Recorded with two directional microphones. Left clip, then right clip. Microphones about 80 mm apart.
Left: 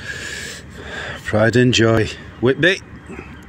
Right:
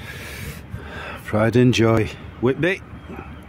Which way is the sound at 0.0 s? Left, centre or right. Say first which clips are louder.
Left 7 dB; centre.